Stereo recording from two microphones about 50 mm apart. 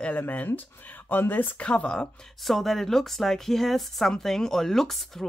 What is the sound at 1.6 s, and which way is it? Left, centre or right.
Speech, left.